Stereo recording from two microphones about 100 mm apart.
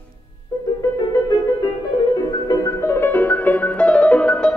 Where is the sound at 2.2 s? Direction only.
40° left (ahead or behind).